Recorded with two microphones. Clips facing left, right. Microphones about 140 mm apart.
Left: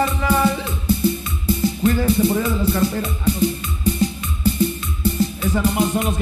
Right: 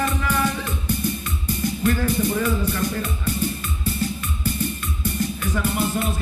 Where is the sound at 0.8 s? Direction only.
15° right (ahead or behind).